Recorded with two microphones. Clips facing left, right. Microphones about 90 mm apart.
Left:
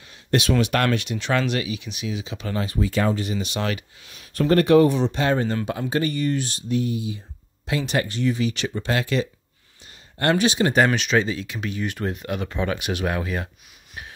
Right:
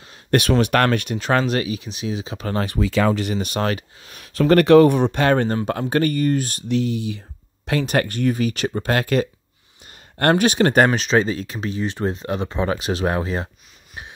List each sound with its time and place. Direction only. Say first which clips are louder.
0.3 s speech: right 3 dB; 50° right (ahead or behind)
2.6 s speech: right 3 dB; 80° right
3.3 s speech: right 4 dB; 45° right (ahead or behind)
4.2 s speech: right 4 dB; 70° right (ahead or behind); by 6.6 s 45° right (ahead or behind)
6.7 s speech: right 3 dB; 90° right; by 10.9 s 50° right (ahead or behind)
10.9 s speech: right 3 dB; 35° right (ahead or behind)